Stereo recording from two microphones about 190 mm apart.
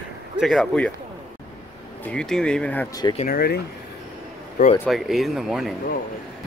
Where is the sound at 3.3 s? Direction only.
55° left (ahead or behind).